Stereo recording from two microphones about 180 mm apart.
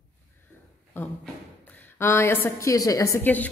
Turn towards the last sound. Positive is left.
turn(degrees=10)  # may be behind; listen again after turning